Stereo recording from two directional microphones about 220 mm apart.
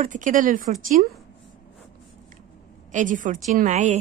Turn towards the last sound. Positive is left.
turn(degrees=-35)  # may be behind; listen again after turning